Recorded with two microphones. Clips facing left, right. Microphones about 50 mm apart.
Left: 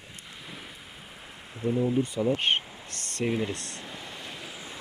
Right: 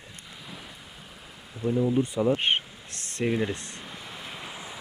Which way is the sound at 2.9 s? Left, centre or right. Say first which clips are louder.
Even; left.